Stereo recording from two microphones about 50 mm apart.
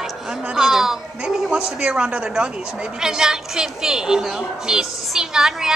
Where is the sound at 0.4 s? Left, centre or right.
Centre.